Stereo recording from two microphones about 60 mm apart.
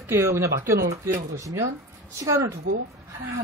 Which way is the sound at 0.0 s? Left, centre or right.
Right.